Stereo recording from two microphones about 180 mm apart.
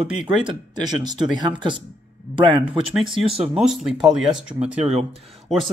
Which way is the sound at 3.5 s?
5° right (ahead or behind).